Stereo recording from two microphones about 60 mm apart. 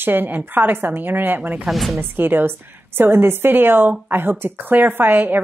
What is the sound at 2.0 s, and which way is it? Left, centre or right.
A woman's voice, right.